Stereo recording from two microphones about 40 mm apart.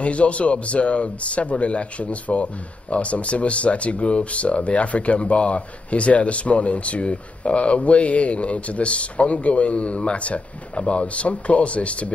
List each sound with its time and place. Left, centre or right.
0.0 s a man's voice: left